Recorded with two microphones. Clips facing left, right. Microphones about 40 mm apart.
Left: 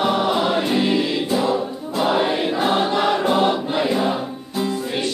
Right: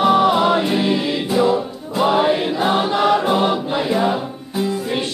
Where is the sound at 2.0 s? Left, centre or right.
Centre.